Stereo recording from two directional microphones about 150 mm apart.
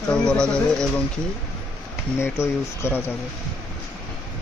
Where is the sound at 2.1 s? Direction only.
15° left (ahead or behind).